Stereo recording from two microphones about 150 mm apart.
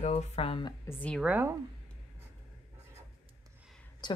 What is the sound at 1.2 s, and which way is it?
Speech, 10° right (ahead or behind).